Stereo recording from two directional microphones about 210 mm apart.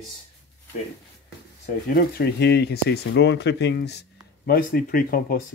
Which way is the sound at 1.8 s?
50° left (ahead or behind).